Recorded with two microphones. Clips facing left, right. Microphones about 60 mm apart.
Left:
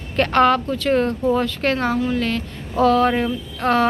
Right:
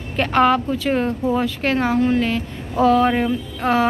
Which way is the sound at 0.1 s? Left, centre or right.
Centre.